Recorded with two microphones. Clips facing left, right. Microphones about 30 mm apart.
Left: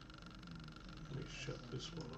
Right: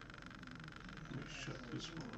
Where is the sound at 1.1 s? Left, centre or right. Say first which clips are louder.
Left 1 dB; centre.